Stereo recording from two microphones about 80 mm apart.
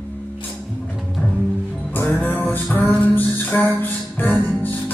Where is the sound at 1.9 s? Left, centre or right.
Left.